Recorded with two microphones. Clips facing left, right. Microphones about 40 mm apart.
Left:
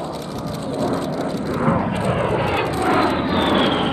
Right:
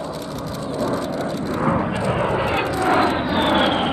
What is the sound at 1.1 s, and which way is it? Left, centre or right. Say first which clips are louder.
Vehicle: left 1 dB; centre.